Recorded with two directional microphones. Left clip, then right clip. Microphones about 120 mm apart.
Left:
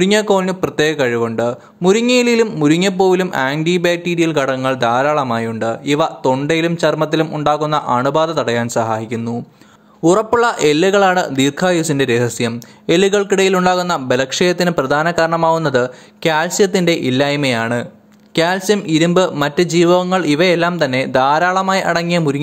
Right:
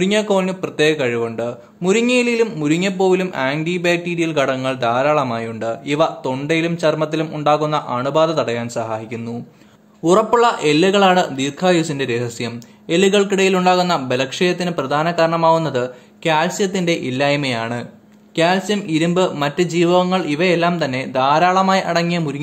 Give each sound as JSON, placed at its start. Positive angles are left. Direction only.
{"t": 0.0, "sound": "speech", "side_deg": 45}
{"t": 12.9, "sound": "speech", "side_deg": 50}
{"t": 18.3, "sound": "speech", "side_deg": 50}
{"t": 18.9, "sound": "speech", "side_deg": 35}
{"t": 21.1, "sound": "speech", "side_deg": 50}
{"t": 21.5, "sound": "speech", "side_deg": 35}